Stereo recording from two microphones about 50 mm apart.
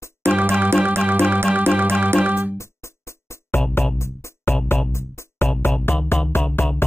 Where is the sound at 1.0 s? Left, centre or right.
Right.